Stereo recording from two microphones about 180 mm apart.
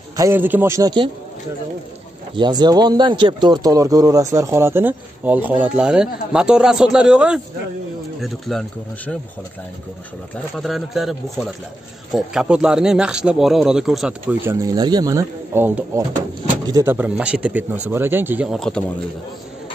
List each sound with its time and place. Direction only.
0.1 s speech: 15° right (ahead or behind)
2.3 s speech: 25° right (ahead or behind); by 9.1 s centre (ahead or behind)
10.6 s speech: centre (ahead or behind)